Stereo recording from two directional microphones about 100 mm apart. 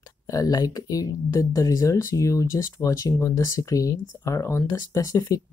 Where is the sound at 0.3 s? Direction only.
40° left (ahead or behind).